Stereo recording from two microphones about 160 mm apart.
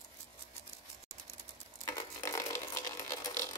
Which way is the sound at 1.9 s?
15° left (ahead or behind).